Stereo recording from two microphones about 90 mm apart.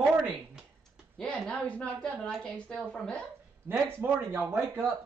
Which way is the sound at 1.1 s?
15° left (ahead or behind).